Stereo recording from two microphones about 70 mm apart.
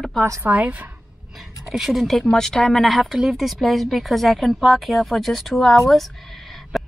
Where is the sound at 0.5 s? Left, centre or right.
Right.